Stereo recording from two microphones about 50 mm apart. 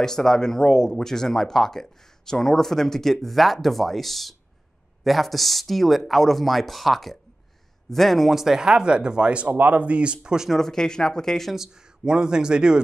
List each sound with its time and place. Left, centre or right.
0.0 s speech: centre; by 9.5 s right
9.5 s speech: right; by 10.5 s centre
10.5 s speech: centre
11.5 s speech: centre